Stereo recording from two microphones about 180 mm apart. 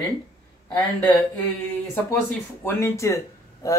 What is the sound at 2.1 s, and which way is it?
Speech, 15° left (ahead or behind).